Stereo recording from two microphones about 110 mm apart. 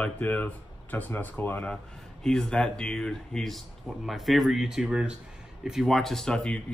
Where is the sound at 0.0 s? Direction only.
15° left (ahead or behind).